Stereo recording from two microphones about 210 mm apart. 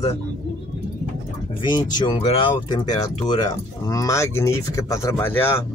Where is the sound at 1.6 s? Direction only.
20° left (ahead or behind).